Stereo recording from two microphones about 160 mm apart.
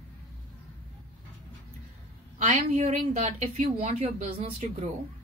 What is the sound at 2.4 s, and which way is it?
Speech, 40° right (ahead or behind).